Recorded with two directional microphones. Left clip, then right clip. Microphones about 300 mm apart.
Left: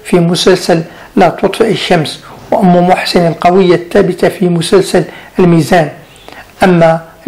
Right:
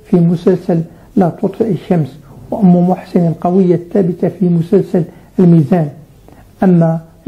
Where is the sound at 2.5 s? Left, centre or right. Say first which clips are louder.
Left 6 dB; left.